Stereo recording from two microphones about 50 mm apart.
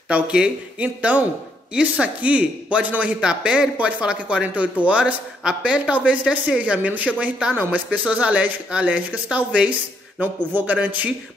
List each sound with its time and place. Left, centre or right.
0.1 s speech: centre
0.7 s speech: right
3.2 s a man's voice: centre